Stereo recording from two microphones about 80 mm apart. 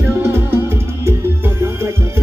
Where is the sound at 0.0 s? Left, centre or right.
Right.